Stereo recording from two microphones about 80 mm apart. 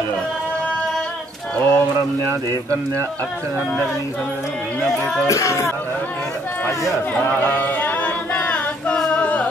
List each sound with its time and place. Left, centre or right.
1.6 s speech: left
4.8 s speech: centre
5.2 s speech: left
7.2 s choir: left